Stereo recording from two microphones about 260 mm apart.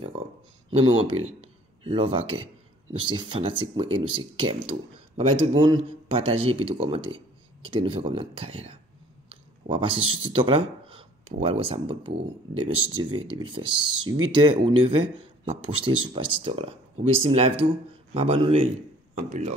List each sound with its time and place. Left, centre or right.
0.7 s speech: right
9.3 s a sound: centre
10.2 s speech: centre